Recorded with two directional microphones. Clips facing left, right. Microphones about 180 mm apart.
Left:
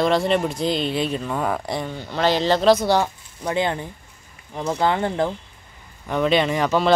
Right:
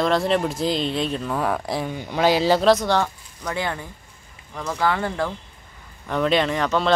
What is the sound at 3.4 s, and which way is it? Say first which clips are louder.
Speech: left 4 dB; 25° left (ahead or behind).